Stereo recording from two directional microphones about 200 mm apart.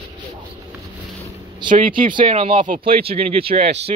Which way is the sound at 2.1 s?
25° right (ahead or behind).